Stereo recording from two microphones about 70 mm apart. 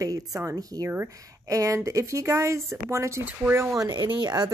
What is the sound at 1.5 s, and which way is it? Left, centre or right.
Speech, right.